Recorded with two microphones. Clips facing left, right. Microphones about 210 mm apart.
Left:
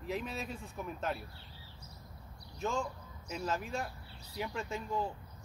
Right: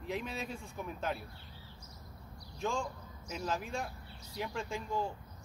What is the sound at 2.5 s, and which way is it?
A man's voice, 5° left (ahead or behind).